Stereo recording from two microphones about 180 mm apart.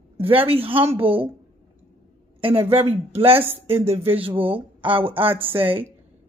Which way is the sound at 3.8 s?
35° right (ahead or behind).